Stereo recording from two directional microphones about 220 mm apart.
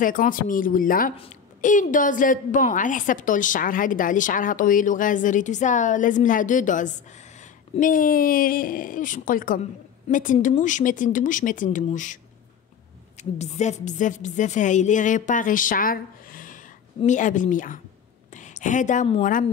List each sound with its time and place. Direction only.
0.0 s a woman's voice: 40° left (ahead or behind)
13.2 s a woman's voice: 30° left (ahead or behind)